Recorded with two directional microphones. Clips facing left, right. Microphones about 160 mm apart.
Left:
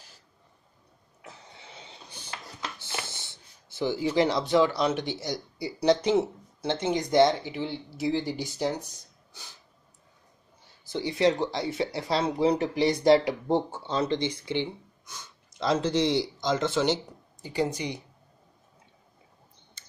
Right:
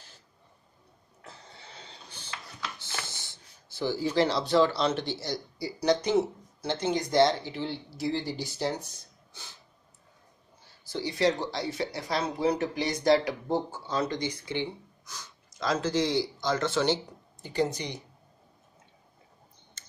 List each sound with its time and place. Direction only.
1.2 s a sound: 15° left (ahead or behind)
3.7 s speech: 20° left (ahead or behind)
10.9 s speech: 20° left (ahead or behind)